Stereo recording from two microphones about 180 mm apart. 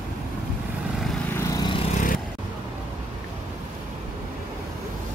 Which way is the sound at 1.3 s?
15° left (ahead or behind).